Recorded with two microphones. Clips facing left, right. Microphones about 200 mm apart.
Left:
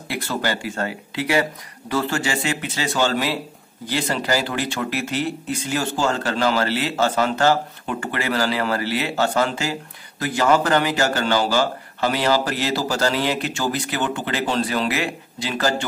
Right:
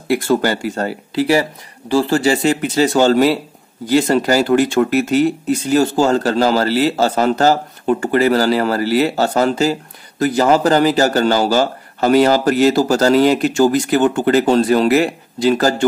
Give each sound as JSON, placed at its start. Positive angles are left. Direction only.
{"t": 0.3, "sound": "speech", "side_deg": -45}